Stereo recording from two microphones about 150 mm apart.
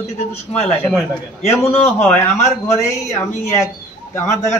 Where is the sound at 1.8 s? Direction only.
10° left (ahead or behind).